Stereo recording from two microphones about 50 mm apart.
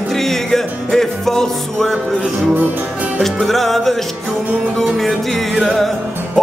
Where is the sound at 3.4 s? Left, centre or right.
Centre.